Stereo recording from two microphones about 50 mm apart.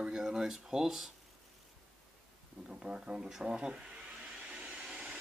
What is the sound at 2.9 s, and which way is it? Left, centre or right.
Speech, centre.